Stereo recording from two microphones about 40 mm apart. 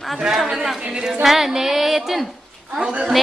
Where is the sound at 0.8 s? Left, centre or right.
Centre.